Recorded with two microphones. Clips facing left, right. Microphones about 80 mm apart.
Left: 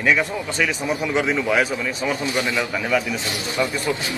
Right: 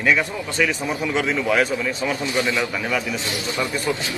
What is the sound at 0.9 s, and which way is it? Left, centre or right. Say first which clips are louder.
Speech: left 1 dB; centre.